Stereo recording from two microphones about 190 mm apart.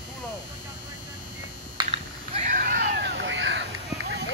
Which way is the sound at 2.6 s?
60° right (ahead or behind).